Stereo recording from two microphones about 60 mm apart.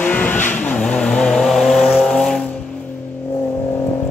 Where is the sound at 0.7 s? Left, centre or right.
Centre.